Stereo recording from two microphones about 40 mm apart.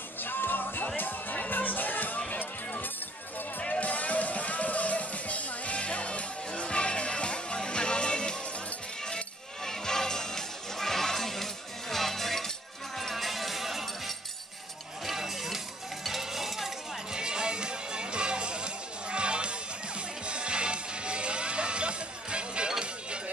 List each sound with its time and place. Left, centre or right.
0.2 s music: left
3.8 s music: left
9.7 s music: centre
15.0 s a sound: centre
17.1 s music: centre